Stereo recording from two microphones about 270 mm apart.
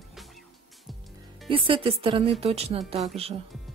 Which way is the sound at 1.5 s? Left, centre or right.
Centre.